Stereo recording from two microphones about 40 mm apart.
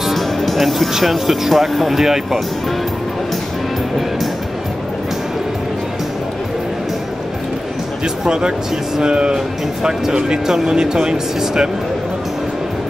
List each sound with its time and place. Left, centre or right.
0.1 s speech: centre
8.3 s speech: right